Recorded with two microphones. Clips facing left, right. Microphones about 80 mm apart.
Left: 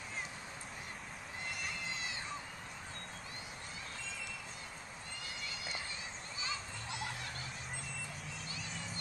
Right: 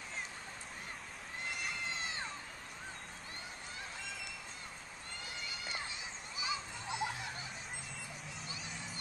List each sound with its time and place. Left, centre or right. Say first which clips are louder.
6.4 s children playing: right 3 dB; centre